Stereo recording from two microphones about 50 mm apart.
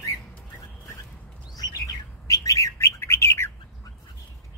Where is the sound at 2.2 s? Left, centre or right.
Left.